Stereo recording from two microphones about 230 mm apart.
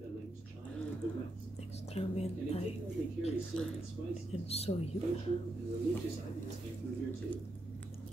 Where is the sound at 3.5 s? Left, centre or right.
Centre.